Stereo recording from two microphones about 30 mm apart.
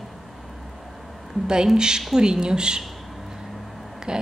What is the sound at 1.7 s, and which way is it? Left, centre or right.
A woman's voice, right.